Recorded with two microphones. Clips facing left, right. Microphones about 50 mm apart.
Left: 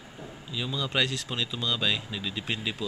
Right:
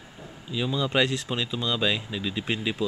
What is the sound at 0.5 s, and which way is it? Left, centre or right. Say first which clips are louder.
Speech: right 5 dB; centre.